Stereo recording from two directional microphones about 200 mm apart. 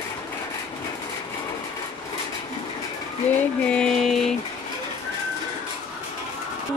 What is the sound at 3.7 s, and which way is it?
Music, centre (ahead or behind).